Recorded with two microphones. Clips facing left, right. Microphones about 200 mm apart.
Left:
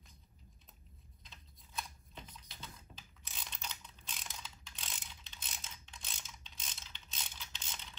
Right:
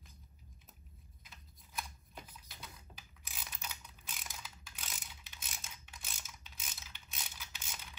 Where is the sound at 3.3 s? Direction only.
10° right (ahead or behind).